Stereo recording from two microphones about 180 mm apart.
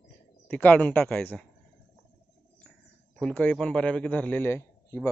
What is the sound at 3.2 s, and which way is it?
Speech, 5° left (ahead or behind).